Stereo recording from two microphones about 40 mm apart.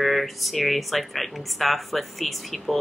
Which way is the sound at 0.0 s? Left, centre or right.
Centre.